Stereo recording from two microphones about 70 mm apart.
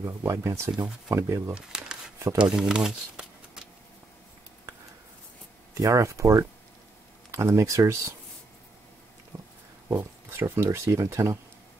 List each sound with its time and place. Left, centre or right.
0.0 s speech: right
1.5 s speech: centre
5.8 s speech: right
9.3 s pig: right
9.8 s speech: right